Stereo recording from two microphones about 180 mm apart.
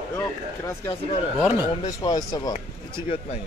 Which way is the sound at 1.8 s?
20° left (ahead or behind).